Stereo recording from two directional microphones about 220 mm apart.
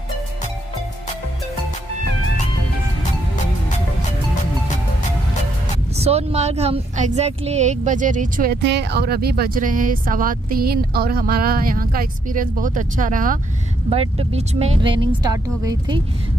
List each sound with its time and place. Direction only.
5.9 s speech: 30° right (ahead or behind)
13.8 s speech: 25° right (ahead or behind)